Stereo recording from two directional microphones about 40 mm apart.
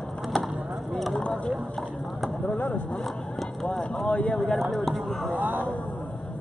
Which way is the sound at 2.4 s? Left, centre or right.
Left.